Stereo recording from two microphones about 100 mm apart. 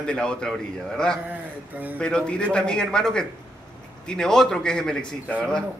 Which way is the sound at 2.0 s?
10° left (ahead or behind).